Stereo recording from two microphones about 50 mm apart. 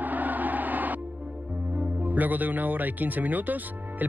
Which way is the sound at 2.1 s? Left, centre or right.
Right.